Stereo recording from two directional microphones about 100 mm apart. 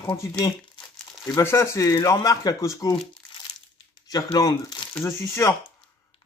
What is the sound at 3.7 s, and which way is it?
Crumpling, 40° left (ahead or behind).